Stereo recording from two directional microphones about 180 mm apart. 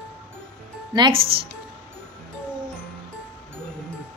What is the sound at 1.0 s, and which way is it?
Speech, 30° right (ahead or behind).